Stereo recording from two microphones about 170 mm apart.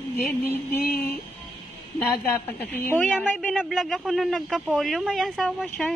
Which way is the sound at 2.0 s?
15° left (ahead or behind).